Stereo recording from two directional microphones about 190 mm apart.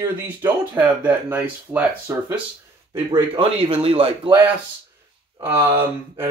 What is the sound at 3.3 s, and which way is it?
Speech, 30° right (ahead or behind).